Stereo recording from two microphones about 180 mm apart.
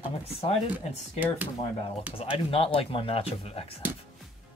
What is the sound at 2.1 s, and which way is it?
Speech, 30° left (ahead or behind).